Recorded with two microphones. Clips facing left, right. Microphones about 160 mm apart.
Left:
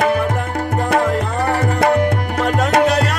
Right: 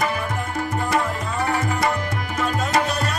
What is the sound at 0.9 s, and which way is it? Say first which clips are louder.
Music: left 9 dB; 65° left (ahead or behind).